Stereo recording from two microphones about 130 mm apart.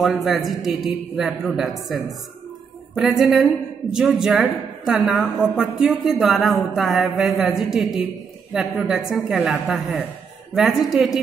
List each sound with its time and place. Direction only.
0.0 s a woman's voice: centre (ahead or behind)
2.9 s a woman's voice: centre (ahead or behind)